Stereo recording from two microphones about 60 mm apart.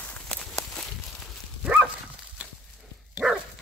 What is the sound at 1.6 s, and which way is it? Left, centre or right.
Dog, centre.